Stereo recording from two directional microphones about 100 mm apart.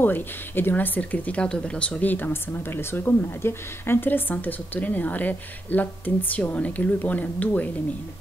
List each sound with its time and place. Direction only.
0.0 s speech: 20° left (ahead or behind)